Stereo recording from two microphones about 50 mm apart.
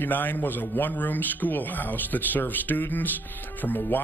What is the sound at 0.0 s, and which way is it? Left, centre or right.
Speech, left.